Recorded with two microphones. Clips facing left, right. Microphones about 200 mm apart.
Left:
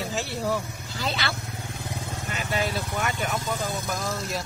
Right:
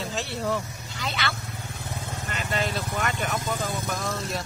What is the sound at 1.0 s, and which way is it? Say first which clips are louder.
Speech: left 2 dB; 35° left (ahead or behind).